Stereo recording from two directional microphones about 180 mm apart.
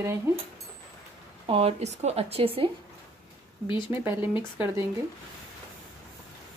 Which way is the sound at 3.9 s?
10° right (ahead or behind).